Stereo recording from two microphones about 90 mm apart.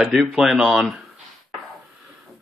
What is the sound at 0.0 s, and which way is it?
Speech, 5° right (ahead or behind).